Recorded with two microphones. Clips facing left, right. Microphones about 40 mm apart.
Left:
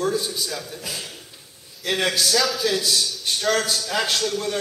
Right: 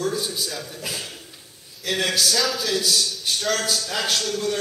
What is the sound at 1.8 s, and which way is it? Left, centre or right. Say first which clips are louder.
A man's voice: left 1 dB; centre.